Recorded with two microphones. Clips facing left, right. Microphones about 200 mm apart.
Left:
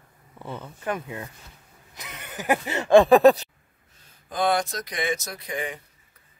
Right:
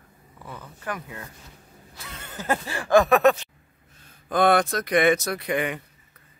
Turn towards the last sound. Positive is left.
turn(degrees=-70)  # may be behind; listen again after turning